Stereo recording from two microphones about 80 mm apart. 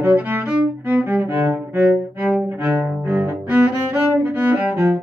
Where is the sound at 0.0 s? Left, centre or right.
Right.